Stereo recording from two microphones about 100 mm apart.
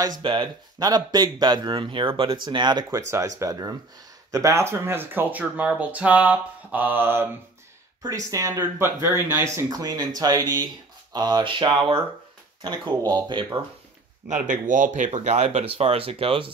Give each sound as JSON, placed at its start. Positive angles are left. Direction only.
{"t": 0.2, "sound": "speech", "side_deg": -55}
{"t": 0.8, "sound": "speech", "side_deg": -40}
{"t": 3.0, "sound": "speech", "side_deg": -30}
{"t": 8.0, "sound": "speech", "side_deg": -35}
{"t": 9.7, "sound": "speech", "side_deg": -40}
{"t": 15.0, "sound": "speech", "side_deg": -90}